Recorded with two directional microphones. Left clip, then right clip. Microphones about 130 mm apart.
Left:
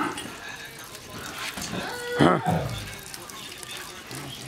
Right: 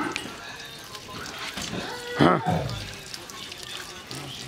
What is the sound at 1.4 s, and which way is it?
Music, 35° left (ahead or behind).